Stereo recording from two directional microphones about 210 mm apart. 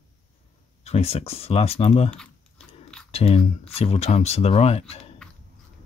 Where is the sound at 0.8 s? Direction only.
30° left (ahead or behind).